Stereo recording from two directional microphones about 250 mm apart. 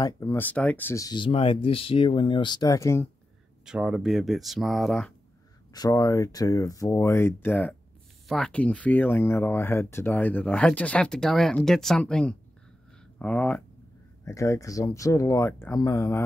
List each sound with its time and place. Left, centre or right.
0.0 s speech: centre
3.6 s speech: centre
5.7 s speech: centre